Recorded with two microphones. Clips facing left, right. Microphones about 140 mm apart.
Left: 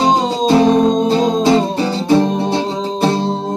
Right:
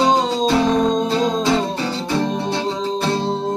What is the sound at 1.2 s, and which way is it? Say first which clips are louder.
Music: left 5 dB; 20° left (ahead or behind).